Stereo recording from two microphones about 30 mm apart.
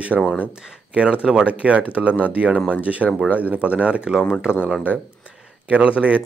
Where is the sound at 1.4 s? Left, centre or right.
Right.